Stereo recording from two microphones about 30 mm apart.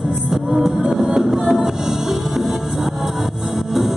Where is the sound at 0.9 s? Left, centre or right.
Centre.